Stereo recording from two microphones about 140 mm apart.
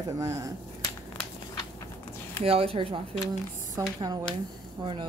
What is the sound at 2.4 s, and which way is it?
Speech, 45° right (ahead or behind).